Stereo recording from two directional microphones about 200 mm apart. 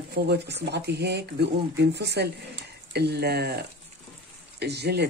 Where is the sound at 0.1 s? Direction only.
55° right (ahead or behind).